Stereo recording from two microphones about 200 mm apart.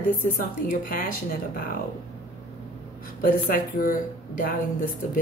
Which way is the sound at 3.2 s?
45° left (ahead or behind).